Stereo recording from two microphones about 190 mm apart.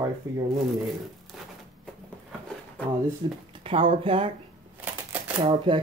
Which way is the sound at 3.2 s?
25° right (ahead or behind).